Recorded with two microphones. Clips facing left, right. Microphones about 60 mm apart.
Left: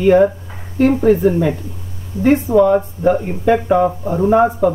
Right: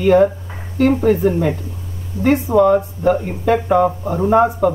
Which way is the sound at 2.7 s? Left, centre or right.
Centre.